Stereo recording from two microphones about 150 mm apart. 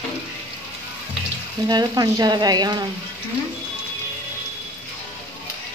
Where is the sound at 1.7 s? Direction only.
25° right (ahead or behind).